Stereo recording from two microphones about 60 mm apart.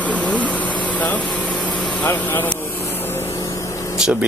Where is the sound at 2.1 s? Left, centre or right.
Left.